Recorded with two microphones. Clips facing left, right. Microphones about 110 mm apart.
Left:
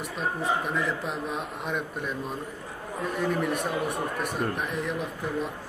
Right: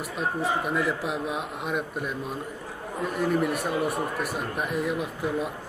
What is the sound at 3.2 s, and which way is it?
Speech, 5° right (ahead or behind).